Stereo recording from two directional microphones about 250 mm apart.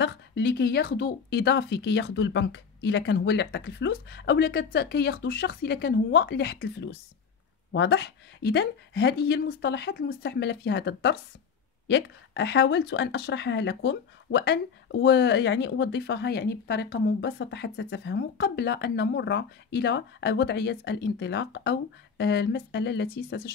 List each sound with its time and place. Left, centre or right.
0.0 s speech: left